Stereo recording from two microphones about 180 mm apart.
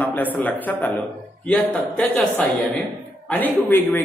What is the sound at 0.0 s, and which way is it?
A man's voice, 10° left (ahead or behind).